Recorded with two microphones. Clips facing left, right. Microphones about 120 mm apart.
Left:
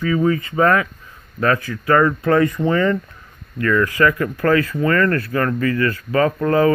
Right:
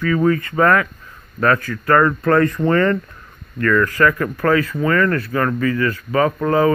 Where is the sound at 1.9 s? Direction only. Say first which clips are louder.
Right 1 dB; 55° right (ahead or behind).